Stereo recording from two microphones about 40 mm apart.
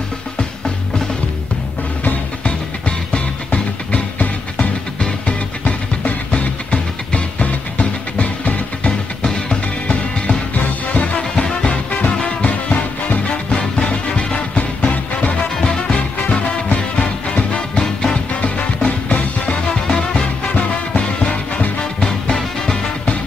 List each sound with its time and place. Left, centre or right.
3.1 s music: left
6.3 s music: left
10.6 s music: left
11.1 s music: centre
12.4 s music: left
15.6 s music: left
16.2 s music: left
17.7 s music: centre
18.4 s music: left
19.7 s music: centre
20.5 s music: left
22.0 s music: centre